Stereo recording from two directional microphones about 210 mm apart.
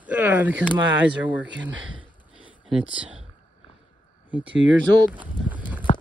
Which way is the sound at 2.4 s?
5° right (ahead or behind).